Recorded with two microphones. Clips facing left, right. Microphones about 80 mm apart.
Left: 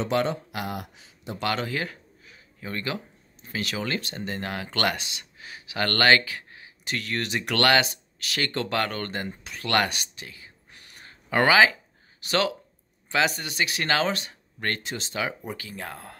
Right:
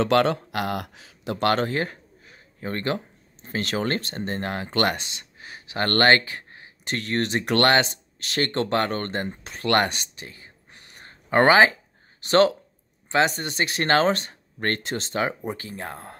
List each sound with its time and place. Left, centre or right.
0.0 s speech: right
1.4 s a sound: right
3.4 s speech: right